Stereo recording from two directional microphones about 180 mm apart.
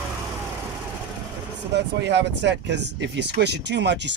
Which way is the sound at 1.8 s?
75° right (ahead or behind).